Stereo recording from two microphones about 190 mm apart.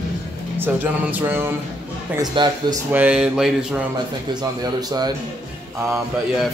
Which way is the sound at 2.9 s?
10° right (ahead or behind).